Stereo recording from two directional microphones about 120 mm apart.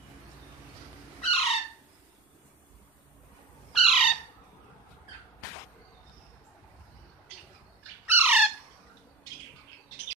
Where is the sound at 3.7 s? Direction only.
Centre (ahead or behind).